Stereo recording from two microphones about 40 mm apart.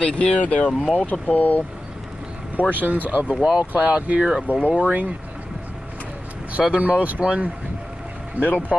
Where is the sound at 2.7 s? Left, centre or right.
Right.